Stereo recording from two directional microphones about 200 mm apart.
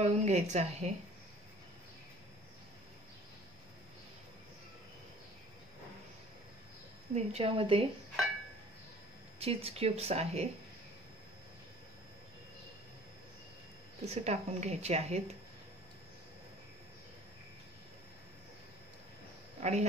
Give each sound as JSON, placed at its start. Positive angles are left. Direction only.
{"t": 0.0, "sound": "speech", "side_deg": -35}
{"t": 7.2, "sound": "speech", "side_deg": -30}
{"t": 9.4, "sound": "speech", "side_deg": -30}
{"t": 14.0, "sound": "speech", "side_deg": -30}
{"t": 19.6, "sound": "speech", "side_deg": -35}